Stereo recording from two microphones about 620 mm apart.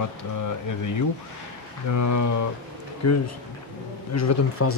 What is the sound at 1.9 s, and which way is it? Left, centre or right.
Speech, left.